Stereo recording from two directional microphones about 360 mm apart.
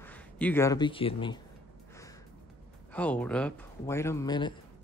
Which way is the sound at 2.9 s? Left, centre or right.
Centre.